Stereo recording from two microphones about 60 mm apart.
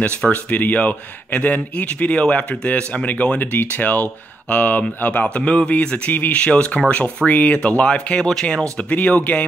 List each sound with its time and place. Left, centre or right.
0.0 s speech: left